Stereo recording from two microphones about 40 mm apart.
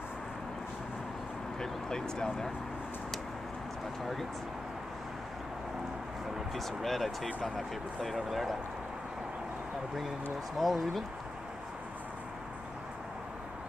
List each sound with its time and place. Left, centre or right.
1.6 s speech: centre
4.0 s speech: centre
6.5 s speech: centre
10.6 s speech: centre